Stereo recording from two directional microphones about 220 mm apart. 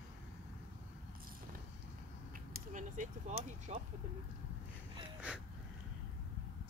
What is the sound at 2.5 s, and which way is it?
Speech, 35° right (ahead or behind).